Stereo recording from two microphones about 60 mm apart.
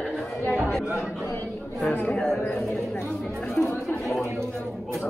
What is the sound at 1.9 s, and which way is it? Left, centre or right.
Speech, left.